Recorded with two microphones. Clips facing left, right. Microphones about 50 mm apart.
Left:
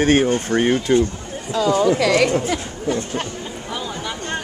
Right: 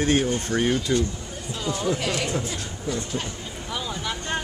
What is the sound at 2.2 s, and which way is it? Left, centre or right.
Speech, left.